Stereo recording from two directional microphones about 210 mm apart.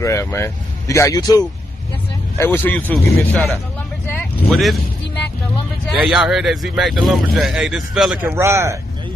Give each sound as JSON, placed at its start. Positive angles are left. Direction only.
{"t": 0.0, "sound": "speech", "side_deg": 15}
{"t": 5.9, "sound": "speech", "side_deg": -5}